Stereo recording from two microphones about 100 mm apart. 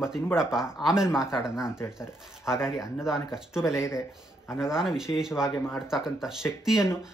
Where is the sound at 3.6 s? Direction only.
30° left (ahead or behind).